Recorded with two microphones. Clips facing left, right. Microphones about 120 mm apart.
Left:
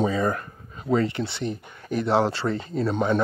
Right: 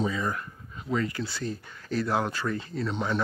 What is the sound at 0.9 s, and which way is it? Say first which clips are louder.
Speech: left 6 dB; 25° left (ahead or behind).